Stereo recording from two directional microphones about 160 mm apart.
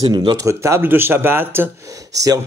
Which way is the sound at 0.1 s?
30° right (ahead or behind).